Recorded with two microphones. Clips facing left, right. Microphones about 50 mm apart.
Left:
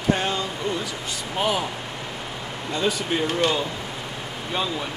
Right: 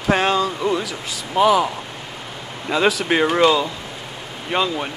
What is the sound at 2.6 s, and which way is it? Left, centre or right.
Speech, right.